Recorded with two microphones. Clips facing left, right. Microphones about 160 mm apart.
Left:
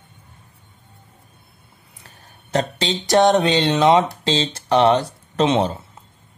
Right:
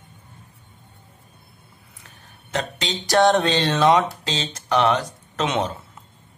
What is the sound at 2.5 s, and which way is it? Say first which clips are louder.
Speech: left 5 dB; 30° left (ahead or behind).